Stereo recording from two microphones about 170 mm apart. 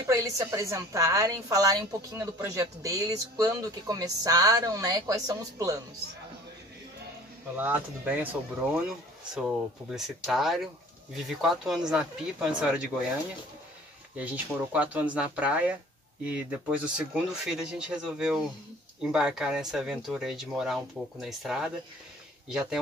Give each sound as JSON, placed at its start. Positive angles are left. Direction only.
{"t": 0.1, "sound": "a woman's voice", "side_deg": -20}
{"t": 7.5, "sound": "speech", "side_deg": -10}
{"t": 14.1, "sound": "speech", "side_deg": -10}